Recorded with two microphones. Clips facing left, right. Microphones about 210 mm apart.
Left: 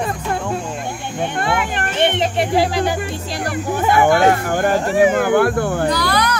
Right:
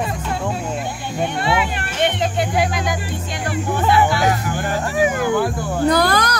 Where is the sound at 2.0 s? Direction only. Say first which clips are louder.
Left 2 dB; 25° left (ahead or behind).